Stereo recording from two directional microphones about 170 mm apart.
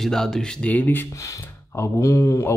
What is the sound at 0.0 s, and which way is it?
Speech, centre (ahead or behind).